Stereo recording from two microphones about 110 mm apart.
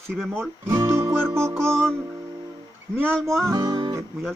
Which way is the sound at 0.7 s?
25° right (ahead or behind).